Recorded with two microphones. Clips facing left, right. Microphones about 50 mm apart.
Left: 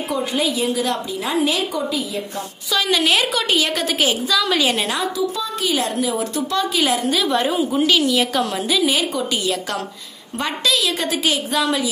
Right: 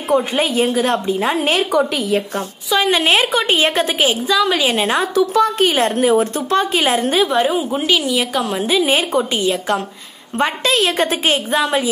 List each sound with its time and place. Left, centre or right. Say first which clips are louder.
0.1 s a woman's voice: right 6 dB; right
1.7 s a woman's voice: right 7 dB; right
2.7 s a woman's voice: right 3 dB; right
5.1 s a woman's voice: right 9 dB; right
5.6 s a woman's voice: right 6 dB; right
7.3 s a woman's voice: right 2 dB; centre
8.5 s a woman's voice: right 5 dB; right